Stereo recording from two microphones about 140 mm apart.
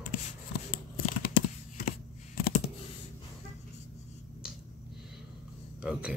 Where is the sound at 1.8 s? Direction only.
90° left.